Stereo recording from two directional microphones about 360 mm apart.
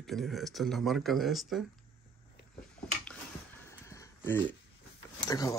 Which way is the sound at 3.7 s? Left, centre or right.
Centre.